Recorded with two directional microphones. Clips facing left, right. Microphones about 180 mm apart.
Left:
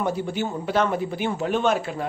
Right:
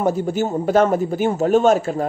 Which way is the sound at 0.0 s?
45° right (ahead or behind).